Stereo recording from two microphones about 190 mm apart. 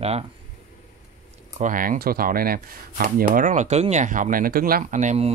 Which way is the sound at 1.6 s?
45° right (ahead or behind).